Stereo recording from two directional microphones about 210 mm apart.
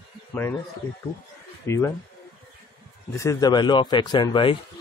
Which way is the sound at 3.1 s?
15° left (ahead or behind).